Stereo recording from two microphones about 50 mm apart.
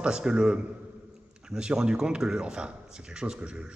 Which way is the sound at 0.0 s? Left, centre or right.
Centre.